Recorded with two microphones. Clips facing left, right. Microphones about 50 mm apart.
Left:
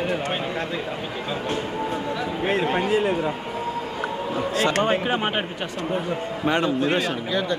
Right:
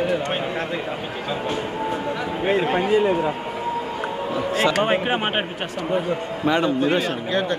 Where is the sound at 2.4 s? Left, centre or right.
Centre.